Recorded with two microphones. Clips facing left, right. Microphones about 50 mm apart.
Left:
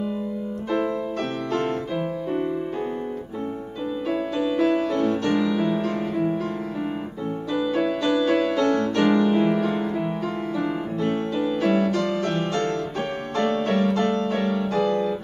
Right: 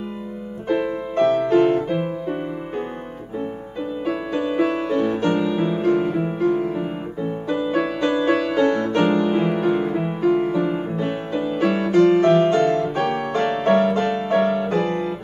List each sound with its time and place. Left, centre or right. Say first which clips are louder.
0.7 s music: right 3 dB; right
4.0 s music: right 1 dB; right